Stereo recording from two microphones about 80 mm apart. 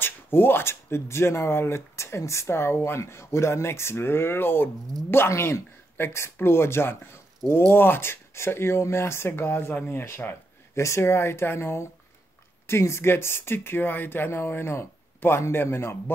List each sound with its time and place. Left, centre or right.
0.0 s speech: left